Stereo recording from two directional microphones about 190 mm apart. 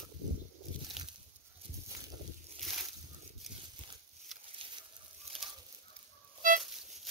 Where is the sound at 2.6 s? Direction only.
Centre (ahead or behind).